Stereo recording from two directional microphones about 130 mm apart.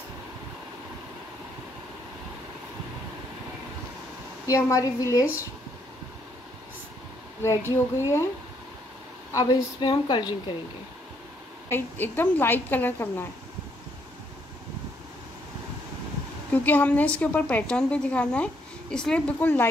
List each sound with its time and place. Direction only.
4.5 s speech: 25° left (ahead or behind)
7.4 s speech: 20° left (ahead or behind)
9.3 s a woman's voice: 30° left (ahead or behind)
11.7 s a woman's voice: 15° left (ahead or behind)
16.6 s a woman's voice: 10° left (ahead or behind)